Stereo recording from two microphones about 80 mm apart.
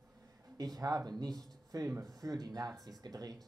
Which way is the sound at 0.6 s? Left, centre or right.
Right.